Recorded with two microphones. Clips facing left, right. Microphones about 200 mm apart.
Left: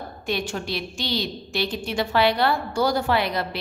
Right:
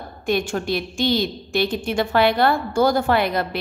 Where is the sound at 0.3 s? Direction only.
50° right (ahead or behind).